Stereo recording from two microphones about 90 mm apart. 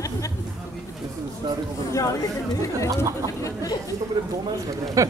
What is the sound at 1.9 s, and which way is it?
Speech, 35° left (ahead or behind).